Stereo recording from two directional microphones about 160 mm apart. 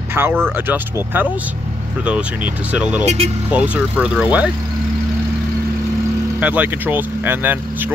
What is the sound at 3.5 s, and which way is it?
Speech, 10° right (ahead or behind).